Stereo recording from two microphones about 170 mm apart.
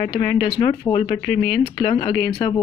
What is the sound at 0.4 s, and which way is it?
Speech, 25° left (ahead or behind).